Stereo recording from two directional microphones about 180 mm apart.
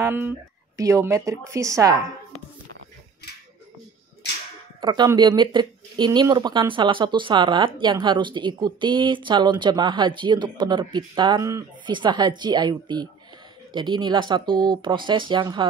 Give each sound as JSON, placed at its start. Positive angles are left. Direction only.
{"t": 0.0, "sound": "a woman's voice", "side_deg": -10}
{"t": 4.7, "sound": "speech", "side_deg": -25}